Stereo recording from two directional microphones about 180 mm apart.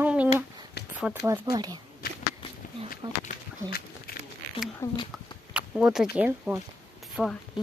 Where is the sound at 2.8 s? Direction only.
55° left (ahead or behind).